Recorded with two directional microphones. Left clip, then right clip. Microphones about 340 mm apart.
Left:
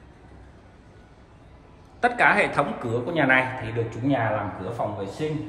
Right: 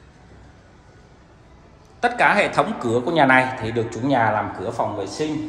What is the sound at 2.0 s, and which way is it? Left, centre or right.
A man's voice, centre.